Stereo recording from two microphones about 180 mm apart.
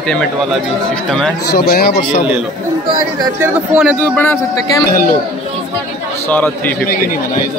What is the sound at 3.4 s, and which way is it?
Speech, 10° right (ahead or behind).